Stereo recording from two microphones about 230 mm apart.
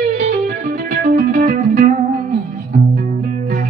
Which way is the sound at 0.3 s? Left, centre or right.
Right.